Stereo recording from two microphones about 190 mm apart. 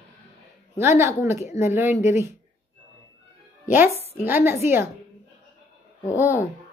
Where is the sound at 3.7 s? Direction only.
10° right (ahead or behind).